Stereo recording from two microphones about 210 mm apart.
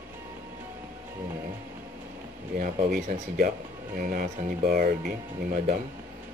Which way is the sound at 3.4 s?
45° right (ahead or behind).